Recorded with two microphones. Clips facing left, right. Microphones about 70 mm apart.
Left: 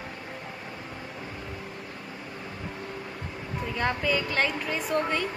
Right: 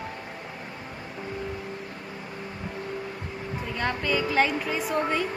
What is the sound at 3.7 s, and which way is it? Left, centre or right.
A woman's voice, centre.